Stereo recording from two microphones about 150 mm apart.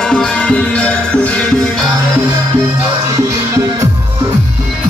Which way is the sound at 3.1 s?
20° right (ahead or behind).